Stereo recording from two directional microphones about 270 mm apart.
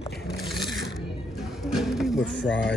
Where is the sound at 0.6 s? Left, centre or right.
Centre.